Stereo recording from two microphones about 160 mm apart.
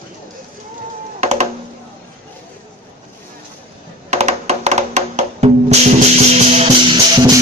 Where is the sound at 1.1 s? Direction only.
45° right (ahead or behind).